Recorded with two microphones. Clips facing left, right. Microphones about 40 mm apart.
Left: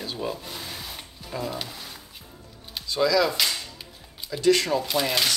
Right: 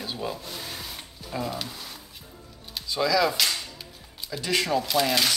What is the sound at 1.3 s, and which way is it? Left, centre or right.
Speech, centre.